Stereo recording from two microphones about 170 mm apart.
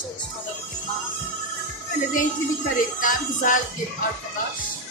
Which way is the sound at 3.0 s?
50° left (ahead or behind).